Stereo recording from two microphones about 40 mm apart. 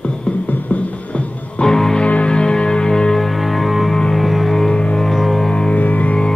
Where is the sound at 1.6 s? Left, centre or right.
Centre.